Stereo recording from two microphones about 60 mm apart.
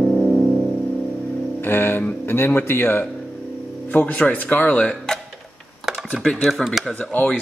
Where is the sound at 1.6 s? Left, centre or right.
Left.